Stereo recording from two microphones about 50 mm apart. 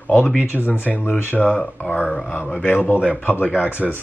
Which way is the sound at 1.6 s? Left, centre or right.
Left.